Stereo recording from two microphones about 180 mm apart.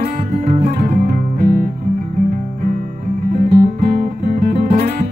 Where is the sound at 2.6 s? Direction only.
45° right (ahead or behind).